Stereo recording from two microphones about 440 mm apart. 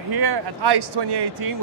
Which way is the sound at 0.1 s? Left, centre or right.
Right.